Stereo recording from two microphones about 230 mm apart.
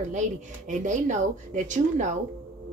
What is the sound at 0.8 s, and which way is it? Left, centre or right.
A woman's voice, right.